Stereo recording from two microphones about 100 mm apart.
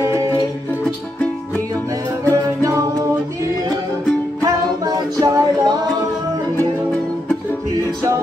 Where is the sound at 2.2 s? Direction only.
35° right (ahead or behind).